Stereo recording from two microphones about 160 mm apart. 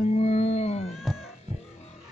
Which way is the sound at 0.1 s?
40° left (ahead or behind).